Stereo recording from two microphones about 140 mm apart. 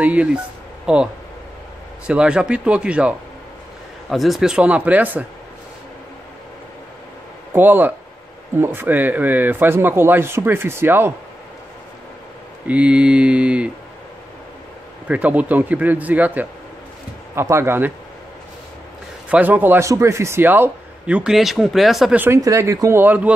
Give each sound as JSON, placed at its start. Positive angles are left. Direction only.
{"t": 0.0, "sound": "a man's voice", "side_deg": -10}
{"t": 2.0, "sound": "a man's voice", "side_deg": -5}
{"t": 7.5, "sound": "a man's voice", "side_deg": -15}
{"t": 12.6, "sound": "a man's voice", "side_deg": -10}
{"t": 15.0, "sound": "a man's voice", "side_deg": -10}
{"t": 19.2, "sound": "a man's voice", "side_deg": -10}
{"t": 22.2, "sound": "speech", "side_deg": -20}